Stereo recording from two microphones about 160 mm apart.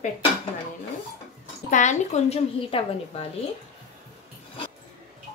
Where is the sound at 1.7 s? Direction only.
50° left (ahead or behind).